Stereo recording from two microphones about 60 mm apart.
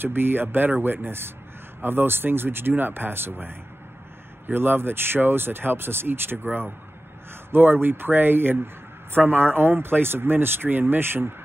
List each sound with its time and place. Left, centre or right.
0.0 s speech: right